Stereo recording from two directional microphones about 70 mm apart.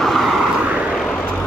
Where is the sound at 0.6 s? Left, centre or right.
Centre.